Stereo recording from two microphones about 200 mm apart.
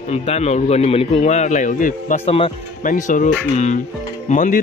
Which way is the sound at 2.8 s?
40° left (ahead or behind).